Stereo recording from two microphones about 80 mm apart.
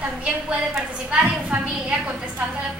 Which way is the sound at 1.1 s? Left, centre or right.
Centre.